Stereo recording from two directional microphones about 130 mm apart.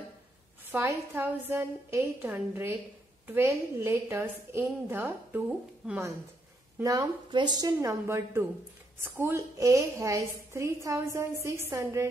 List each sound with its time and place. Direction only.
0.7 s a woman's voice: 15° right (ahead or behind)
6.8 s a woman's voice: 25° right (ahead or behind)